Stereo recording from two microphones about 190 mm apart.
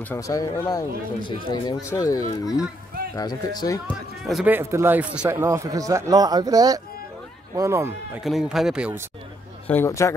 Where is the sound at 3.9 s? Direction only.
Centre (ahead or behind).